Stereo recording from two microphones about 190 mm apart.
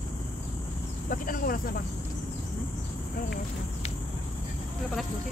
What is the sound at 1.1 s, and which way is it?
Speech, 45° left (ahead or behind).